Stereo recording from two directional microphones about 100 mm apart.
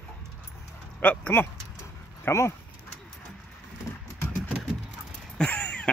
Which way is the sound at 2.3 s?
25° left (ahead or behind).